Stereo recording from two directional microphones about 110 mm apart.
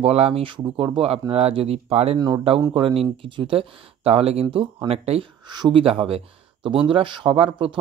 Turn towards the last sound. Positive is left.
turn(degrees=-55)  # may be behind; listen again after turning